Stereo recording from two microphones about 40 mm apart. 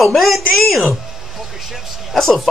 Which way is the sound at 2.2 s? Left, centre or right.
Centre.